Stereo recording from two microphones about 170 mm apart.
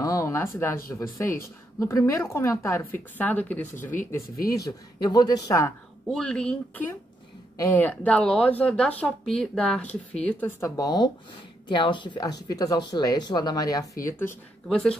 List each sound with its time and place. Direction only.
0.0 s a sound: 20° left (ahead or behind)
0.8 s a woman's voice: 20° left (ahead or behind)
4.5 s speech: 20° left (ahead or behind)
6.0 s a woman's voice: 5° left (ahead or behind)